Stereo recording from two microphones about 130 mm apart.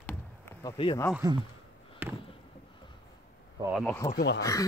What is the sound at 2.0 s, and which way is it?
Basketball bounce, 15° right (ahead or behind).